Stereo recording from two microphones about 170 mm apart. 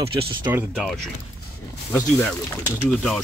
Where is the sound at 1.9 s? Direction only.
15° left (ahead or behind).